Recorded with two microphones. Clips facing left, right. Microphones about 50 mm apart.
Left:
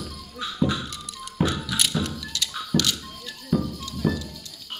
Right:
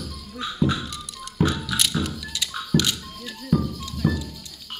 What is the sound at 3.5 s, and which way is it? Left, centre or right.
Music, centre.